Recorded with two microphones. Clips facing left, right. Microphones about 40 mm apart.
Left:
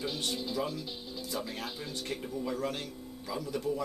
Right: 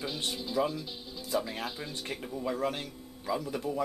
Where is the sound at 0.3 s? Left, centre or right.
Centre.